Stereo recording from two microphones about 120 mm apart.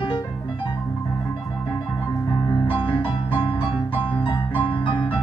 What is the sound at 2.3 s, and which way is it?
Music, 40° left (ahead or behind).